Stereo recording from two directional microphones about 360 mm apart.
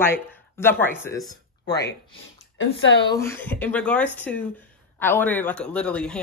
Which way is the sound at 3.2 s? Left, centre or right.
Centre.